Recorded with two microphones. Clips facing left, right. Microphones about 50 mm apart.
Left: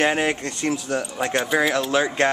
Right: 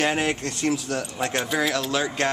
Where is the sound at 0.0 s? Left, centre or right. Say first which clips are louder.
Left 3 dB; centre.